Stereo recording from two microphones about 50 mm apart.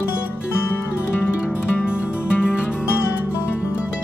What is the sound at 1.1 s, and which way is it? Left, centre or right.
Music, left.